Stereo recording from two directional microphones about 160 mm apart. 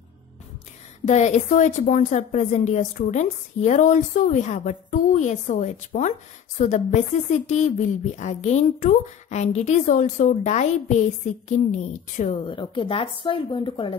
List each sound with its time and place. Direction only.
1.0 s a woman's voice: 45° left (ahead or behind)
12.4 s speech: 30° left (ahead or behind)